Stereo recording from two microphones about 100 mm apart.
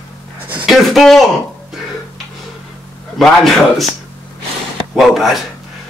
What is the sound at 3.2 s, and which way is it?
Speech, 5° left (ahead or behind).